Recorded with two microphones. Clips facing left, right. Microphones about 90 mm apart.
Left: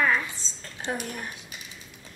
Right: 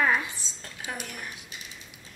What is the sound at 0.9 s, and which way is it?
Speech, 30° left (ahead or behind).